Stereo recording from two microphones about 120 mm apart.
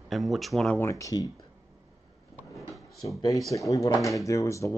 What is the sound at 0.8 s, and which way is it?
Speech, 25° left (ahead or behind).